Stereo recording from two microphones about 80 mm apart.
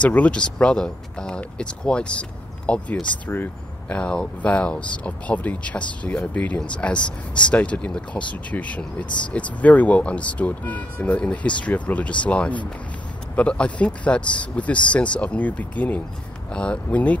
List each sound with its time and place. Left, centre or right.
0.0 s speech: centre
3.9 s speech: centre